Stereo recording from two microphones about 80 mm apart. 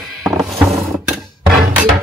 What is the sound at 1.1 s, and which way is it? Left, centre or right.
Music, centre.